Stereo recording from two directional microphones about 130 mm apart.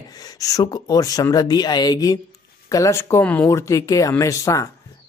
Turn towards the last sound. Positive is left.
turn(degrees=25)  # may be behind; listen again after turning